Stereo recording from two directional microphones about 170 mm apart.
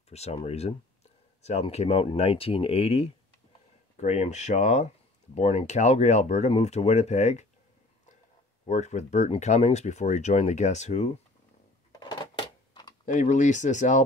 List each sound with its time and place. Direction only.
0.1 s speech: 40° left (ahead or behind)
8.6 s speech: 45° left (ahead or behind)
12.0 s a sound: 25° left (ahead or behind)
13.0 s speech: 45° left (ahead or behind)